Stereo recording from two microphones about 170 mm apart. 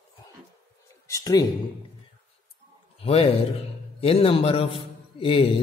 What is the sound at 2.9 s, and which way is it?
A man's voice, 35° left (ahead or behind).